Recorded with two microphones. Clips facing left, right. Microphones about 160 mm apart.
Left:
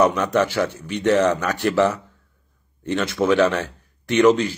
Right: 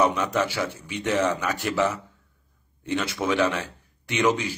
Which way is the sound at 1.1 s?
60° left (ahead or behind).